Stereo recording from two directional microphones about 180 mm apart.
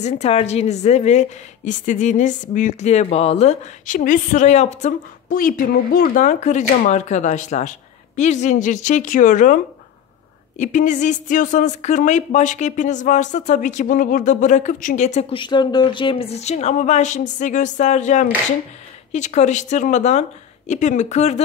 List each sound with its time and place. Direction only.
0.0 s a woman's voice: 35° left (ahead or behind)
10.6 s speech: 45° left (ahead or behind)
15.3 s a woman's voice: 25° left (ahead or behind)